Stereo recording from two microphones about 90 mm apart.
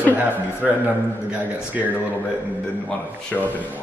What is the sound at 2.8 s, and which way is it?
Speech, 20° left (ahead or behind).